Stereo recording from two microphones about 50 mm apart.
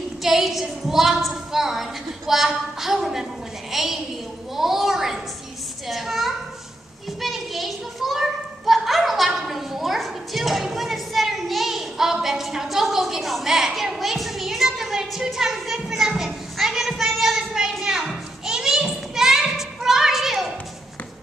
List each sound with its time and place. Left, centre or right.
0.2 s a woman's voice: centre
7.2 s children playing: centre
16.5 s speech: centre
17.4 s a sound: centre